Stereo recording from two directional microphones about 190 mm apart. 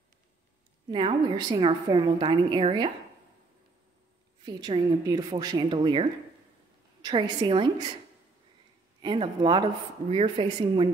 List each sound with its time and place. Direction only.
0.8 s a woman's voice: 25° right (ahead or behind)
4.5 s a woman's voice: 25° right (ahead or behind)
9.0 s a woman's voice: 25° right (ahead or behind)